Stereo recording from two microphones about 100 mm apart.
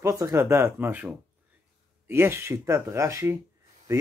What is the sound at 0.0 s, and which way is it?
Speech, 30° right (ahead or behind).